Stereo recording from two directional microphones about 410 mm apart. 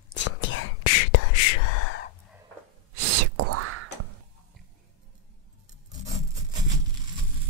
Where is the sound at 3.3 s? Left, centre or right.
Right.